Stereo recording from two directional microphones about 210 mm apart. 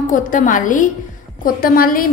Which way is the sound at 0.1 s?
40° left (ahead or behind).